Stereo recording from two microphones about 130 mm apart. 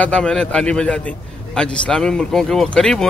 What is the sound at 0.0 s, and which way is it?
A man's voice, 5° left (ahead or behind).